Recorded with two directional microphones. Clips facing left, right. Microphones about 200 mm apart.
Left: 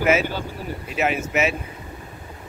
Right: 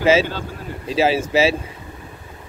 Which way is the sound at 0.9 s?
30° right (ahead or behind).